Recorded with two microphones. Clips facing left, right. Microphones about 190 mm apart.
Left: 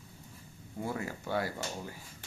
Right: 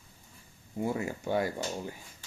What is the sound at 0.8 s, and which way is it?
Speech, 15° right (ahead or behind).